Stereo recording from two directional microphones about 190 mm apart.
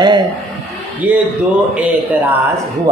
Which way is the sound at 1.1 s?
10° right (ahead or behind).